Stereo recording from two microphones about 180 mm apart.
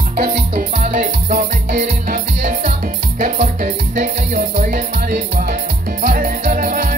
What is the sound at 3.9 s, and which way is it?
Music, 45° right (ahead or behind).